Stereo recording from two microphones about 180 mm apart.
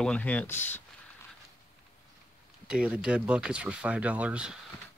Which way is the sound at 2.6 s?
5° right (ahead or behind).